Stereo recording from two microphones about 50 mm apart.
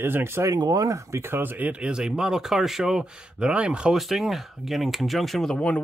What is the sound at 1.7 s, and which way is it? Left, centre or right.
Speech, right.